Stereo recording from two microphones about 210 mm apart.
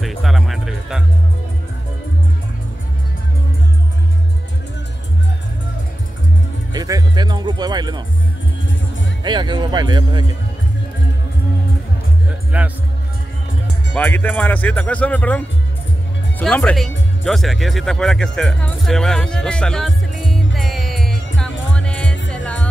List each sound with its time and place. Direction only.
0.0 s music: centre (ahead or behind)
6.7 s music: 20° right (ahead or behind)
9.2 s speech: 20° right (ahead or behind)
12.5 s music: 5° right (ahead or behind)
13.9 s speech: 10° left (ahead or behind)
20.5 s music: centre (ahead or behind)